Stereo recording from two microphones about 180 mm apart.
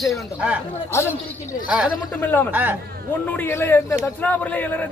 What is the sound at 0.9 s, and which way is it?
Speech, 15° left (ahead or behind).